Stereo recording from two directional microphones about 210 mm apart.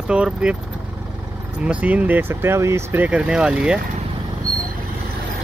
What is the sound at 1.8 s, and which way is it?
Speech, 5° right (ahead or behind).